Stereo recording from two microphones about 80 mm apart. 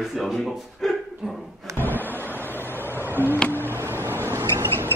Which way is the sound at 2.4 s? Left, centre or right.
Left.